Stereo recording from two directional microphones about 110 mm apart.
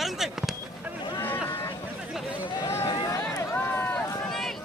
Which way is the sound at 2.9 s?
40° left (ahead or behind).